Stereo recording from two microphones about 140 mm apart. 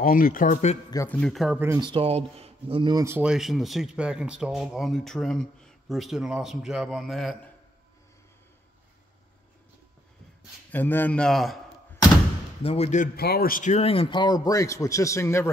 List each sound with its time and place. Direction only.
0.0 s speech: 85° left; by 0.7 s 60° left (ahead or behind)
1.0 s a man's voice: 10° left (ahead or behind)
1.3 s speech: centre (ahead or behind)
1.8 s speech: 40° right (ahead or behind)
2.9 s speech: 25° right (ahead or behind)
3.2 s speech: 5° right (ahead or behind)
10.7 s a man's voice: 15° left (ahead or behind)
12.6 s speech: 45° left (ahead or behind)
13.0 s speech: 85° left; by 15.5 s 20° left (ahead or behind)